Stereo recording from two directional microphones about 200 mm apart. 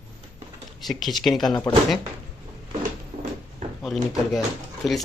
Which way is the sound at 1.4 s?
20° left (ahead or behind).